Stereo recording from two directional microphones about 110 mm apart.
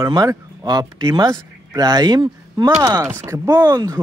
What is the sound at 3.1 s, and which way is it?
Speech, 25° right (ahead or behind).